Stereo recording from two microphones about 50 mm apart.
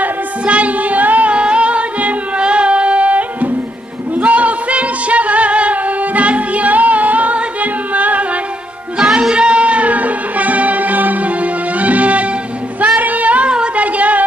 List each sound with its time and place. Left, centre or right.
0.0 s singing: right
4.1 s music: right
8.9 s music: centre
12.8 s child singing: right
13.9 s a sound: right